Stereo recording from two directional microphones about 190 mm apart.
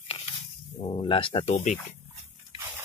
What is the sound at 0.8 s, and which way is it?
Speech, 30° left (ahead or behind).